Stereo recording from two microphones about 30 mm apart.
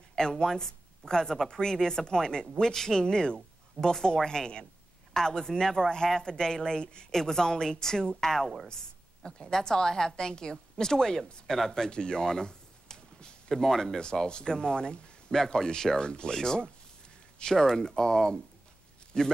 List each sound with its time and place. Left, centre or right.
0.4 s a woman's voice: left
7.1 s a woman's voice: centre
11.9 s a sound: left
13.6 s speech: centre
14.2 s a woman's voice: left